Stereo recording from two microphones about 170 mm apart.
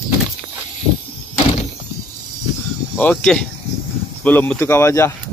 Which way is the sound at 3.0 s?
5° left (ahead or behind).